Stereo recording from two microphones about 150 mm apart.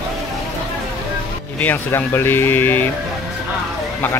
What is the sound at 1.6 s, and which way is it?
Speech, 15° left (ahead or behind).